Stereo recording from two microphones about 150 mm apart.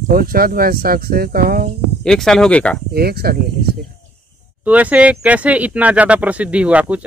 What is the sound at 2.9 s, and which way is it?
Speech, 90° right.